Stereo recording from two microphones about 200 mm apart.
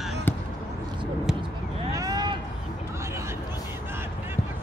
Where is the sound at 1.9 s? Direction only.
15° right (ahead or behind).